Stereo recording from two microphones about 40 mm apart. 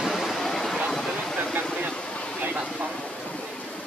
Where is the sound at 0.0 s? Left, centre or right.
Centre.